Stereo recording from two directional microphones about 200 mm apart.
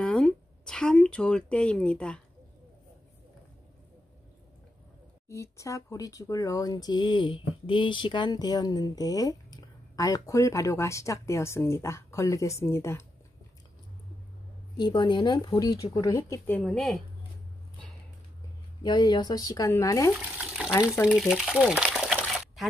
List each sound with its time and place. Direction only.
0.0 s speech: 5° left (ahead or behind)
5.3 s speech: 15° left (ahead or behind)
14.8 s speech: 20° left (ahead or behind); by 17.0 s centre (ahead or behind)
18.8 s speech: 20° left (ahead or behind)
20.1 s water: 5° right (ahead or behind)
21.1 s a sound: 5° right (ahead or behind)